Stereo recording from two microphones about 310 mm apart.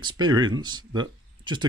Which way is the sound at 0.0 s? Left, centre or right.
Centre.